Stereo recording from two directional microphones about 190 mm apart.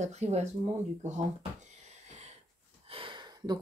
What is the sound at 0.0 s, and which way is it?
Speech, 35° right (ahead or behind).